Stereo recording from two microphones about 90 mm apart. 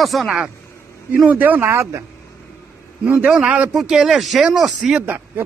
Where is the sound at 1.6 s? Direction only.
30° right (ahead or behind).